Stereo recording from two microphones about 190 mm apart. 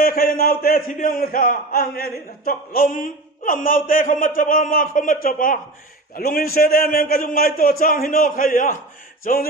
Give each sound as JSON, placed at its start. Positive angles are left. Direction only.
{"t": 0.0, "sound": "a man's voice", "side_deg": 50}